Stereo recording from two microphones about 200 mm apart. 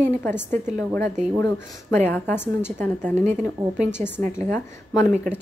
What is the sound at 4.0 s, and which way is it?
A woman's voice, 10° left (ahead or behind).